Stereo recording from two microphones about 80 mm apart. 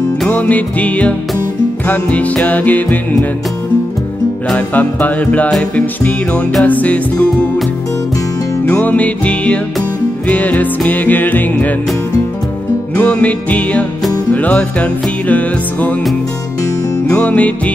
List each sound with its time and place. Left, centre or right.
0.3 s music: centre
4.5 s music: centre
8.6 s music: left
12.9 s music: centre
17.1 s music: centre